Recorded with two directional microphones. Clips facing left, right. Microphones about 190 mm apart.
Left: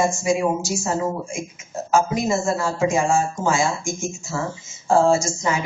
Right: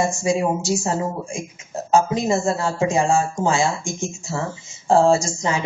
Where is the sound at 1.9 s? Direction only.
35° right (ahead or behind).